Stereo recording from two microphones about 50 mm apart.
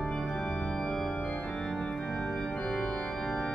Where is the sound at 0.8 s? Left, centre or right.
Centre.